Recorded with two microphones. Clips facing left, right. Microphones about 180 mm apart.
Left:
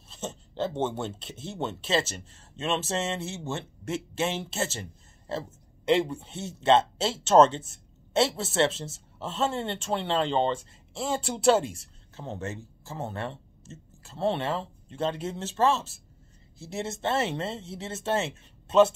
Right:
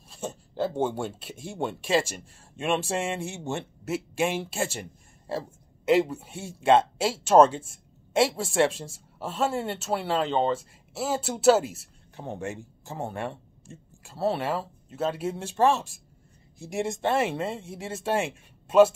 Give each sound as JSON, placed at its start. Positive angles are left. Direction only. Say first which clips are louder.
{"t": 0.1, "sound": "speech", "louder": "right 2 dB", "side_deg": -10}